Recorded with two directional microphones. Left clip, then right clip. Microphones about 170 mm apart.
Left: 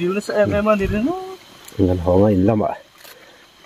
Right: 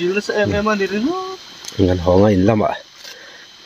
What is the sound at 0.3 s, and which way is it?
Speech, 30° left (ahead or behind).